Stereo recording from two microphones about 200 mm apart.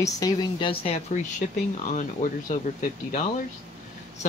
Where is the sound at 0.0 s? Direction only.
20° left (ahead or behind).